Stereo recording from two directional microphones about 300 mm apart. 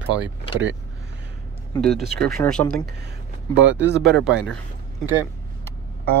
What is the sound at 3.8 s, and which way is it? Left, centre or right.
Speech, right.